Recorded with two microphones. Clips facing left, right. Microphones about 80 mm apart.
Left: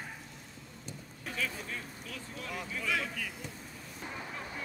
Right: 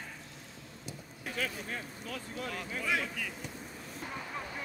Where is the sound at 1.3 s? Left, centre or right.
Right.